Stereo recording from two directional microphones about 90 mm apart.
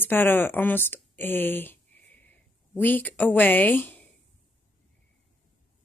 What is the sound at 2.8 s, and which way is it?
A woman's voice, 20° left (ahead or behind).